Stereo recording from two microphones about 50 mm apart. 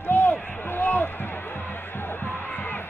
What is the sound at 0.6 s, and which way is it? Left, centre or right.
Basketball bounce, left.